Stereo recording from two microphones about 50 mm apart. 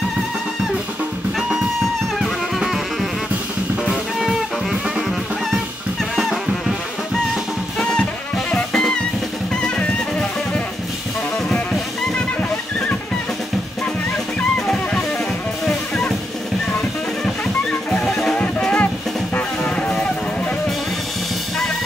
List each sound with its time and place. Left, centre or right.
2.2 s music: centre
7.8 s music: centre
18.0 s music: centre